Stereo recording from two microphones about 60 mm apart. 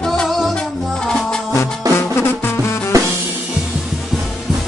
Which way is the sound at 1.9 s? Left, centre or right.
Left.